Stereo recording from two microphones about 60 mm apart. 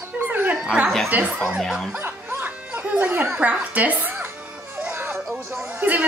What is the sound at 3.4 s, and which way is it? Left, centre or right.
Speech, right.